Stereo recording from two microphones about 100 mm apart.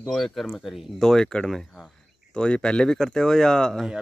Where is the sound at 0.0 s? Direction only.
Centre (ahead or behind).